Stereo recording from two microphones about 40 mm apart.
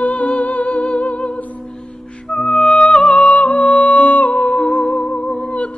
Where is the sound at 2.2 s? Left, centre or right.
Centre.